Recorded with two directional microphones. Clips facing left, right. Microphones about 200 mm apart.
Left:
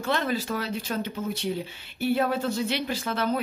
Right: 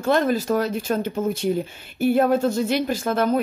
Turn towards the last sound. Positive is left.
turn(degrees=-45)  # may be behind; listen again after turning